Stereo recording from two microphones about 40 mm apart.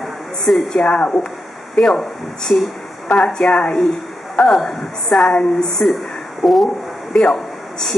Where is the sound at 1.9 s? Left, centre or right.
Centre.